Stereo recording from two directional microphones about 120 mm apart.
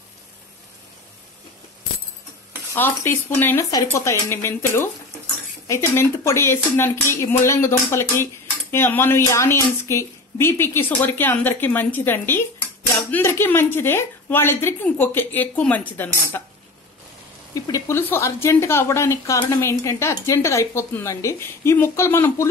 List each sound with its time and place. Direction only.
2.7 s a woman's voice: 20° left (ahead or behind)
17.6 s a woman's voice: 25° left (ahead or behind)